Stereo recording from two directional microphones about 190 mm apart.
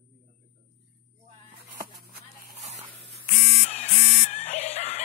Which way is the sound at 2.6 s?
35° right (ahead or behind).